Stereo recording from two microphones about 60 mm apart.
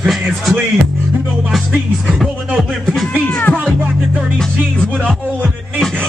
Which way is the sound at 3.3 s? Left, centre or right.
Centre.